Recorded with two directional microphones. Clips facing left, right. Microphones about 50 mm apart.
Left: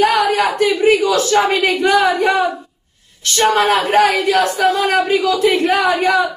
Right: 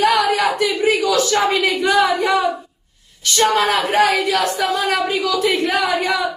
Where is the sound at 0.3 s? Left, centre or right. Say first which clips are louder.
Left 2 dB; left.